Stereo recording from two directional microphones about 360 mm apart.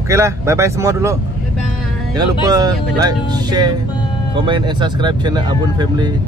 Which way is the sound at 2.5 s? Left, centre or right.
Centre.